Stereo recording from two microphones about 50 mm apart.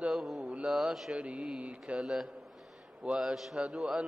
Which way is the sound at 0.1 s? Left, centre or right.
Centre.